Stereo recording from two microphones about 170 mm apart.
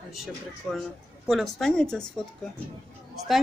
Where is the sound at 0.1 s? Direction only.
Centre (ahead or behind).